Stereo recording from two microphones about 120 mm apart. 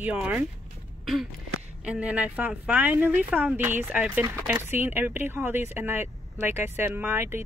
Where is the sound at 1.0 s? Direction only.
5° right (ahead or behind).